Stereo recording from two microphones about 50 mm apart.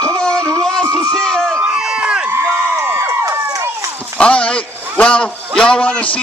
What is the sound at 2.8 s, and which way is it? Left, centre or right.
Run, right.